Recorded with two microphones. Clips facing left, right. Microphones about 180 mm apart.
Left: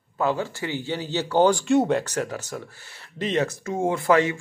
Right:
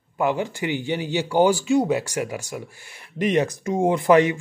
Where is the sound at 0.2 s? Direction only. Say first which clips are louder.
Right 2 dB; 15° right (ahead or behind).